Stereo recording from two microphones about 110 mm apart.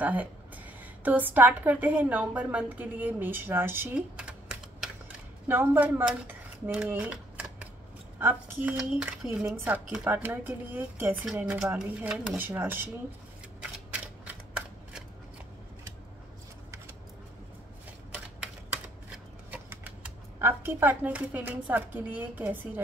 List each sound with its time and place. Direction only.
0.0 s a woman's voice: 15° right (ahead or behind)
4.2 s typing: 10° right (ahead or behind)
5.5 s a woman's voice: 20° right (ahead or behind)
13.6 s a sound: 10° right (ahead or behind)
18.7 s typewriter: 10° right (ahead or behind)
19.7 s speech: 20° right (ahead or behind)